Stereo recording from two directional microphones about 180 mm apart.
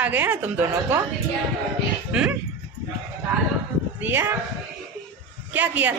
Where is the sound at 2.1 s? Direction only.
5° right (ahead or behind).